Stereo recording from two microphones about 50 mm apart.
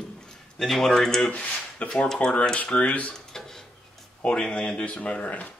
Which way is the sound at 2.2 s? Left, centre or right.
Centre.